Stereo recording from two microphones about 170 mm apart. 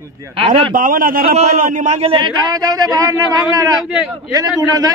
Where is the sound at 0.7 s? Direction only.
55° right (ahead or behind).